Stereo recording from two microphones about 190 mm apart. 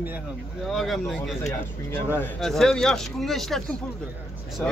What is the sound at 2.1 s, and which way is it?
Speech, centre (ahead or behind).